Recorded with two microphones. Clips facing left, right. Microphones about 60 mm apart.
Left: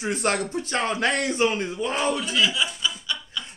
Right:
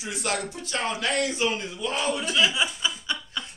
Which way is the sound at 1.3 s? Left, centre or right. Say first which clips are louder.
Left 4 dB; left.